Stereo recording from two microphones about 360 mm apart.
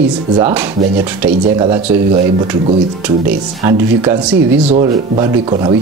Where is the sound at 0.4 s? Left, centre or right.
Centre.